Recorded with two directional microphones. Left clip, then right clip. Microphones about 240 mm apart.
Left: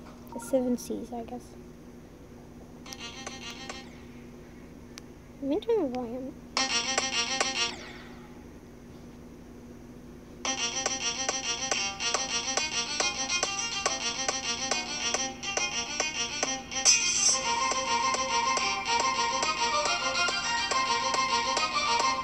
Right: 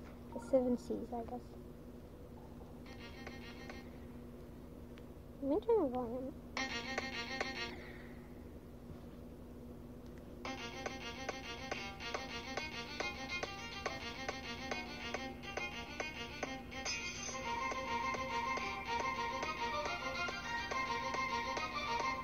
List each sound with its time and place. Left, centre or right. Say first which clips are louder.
0.3 s a woman's voice: left 5 dB; left
2.9 s music: left 12 dB; left
5.5 s a woman's voice: left 6 dB; left
6.5 s music: left 13 dB; left
10.4 s music: left 14 dB; left